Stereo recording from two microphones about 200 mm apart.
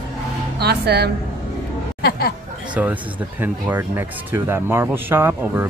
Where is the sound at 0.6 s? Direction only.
55° right (ahead or behind).